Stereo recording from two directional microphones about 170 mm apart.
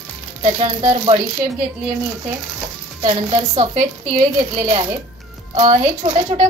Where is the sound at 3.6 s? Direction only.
40° right (ahead or behind).